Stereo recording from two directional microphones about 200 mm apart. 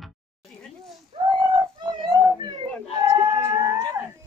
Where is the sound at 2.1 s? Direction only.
20° right (ahead or behind).